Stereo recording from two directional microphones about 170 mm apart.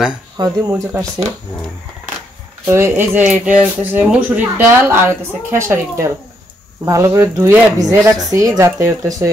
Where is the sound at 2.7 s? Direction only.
15° right (ahead or behind).